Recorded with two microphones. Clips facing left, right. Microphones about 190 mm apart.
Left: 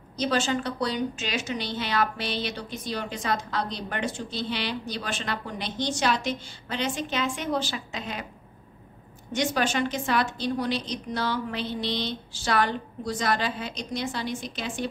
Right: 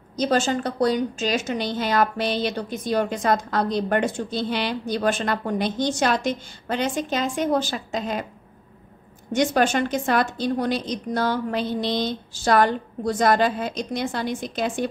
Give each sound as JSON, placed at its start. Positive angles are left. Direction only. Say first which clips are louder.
{"t": 0.1, "sound": "a woman's voice", "louder": "right 4 dB", "side_deg": -45}
{"t": 9.3, "sound": "a woman's voice", "louder": "right 6 dB", "side_deg": -50}